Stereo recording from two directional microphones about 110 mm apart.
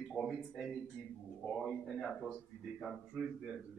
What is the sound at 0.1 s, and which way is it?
A man's voice, centre (ahead or behind).